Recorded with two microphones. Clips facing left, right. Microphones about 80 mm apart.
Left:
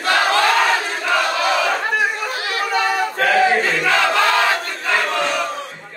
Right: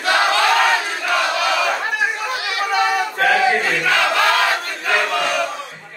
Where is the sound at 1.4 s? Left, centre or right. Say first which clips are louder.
Left 1 dB; left.